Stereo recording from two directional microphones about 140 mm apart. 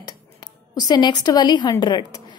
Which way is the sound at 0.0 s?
30° left (ahead or behind).